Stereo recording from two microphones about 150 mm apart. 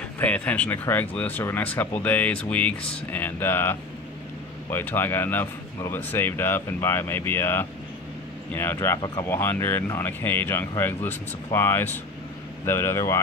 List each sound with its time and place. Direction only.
0.2 s speech: 10° left (ahead or behind); by 9.2 s 25° left (ahead or behind)
9.3 s speech: 15° left (ahead or behind)